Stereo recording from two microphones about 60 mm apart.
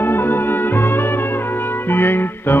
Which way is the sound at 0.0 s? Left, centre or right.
Left.